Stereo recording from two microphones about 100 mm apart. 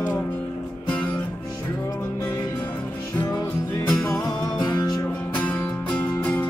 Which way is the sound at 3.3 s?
30° left (ahead or behind).